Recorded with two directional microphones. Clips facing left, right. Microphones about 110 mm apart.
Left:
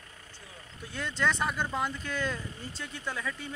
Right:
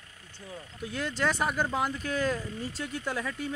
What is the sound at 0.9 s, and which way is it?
Speech, 5° right (ahead or behind).